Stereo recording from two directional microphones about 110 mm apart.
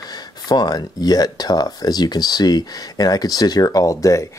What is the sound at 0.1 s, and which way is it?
Speech, 35° left (ahead or behind).